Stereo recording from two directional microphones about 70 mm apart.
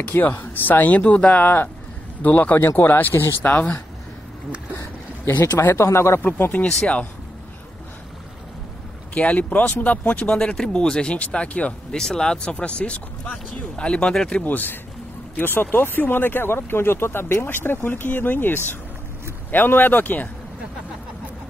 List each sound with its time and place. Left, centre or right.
0.1 s speech: left
5.6 s speech: left
6.2 s speech: left
6.6 s speech: centre
9.1 s speech: left
14.4 s speech: left